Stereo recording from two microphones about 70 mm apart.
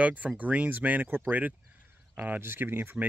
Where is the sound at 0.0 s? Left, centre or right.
Right.